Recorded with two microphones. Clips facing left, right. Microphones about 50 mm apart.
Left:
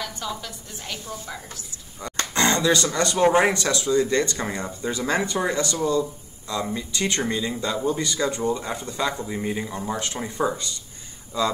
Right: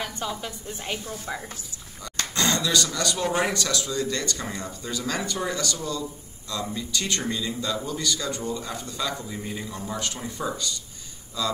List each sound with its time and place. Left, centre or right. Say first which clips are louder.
0.3 s a woman's voice: right 1 dB; right
2.0 s speech: left 4 dB; left